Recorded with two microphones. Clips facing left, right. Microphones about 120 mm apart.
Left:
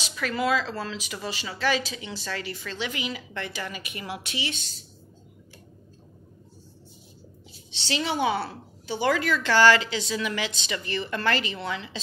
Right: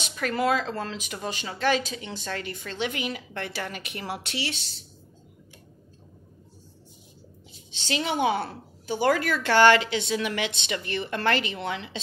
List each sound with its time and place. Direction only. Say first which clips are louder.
0.0 s speech: right 1 dB; 50° right (ahead or behind); by 4.6 s 65° right (ahead or behind)
7.7 s a woman's voice: even; 45° right (ahead or behind)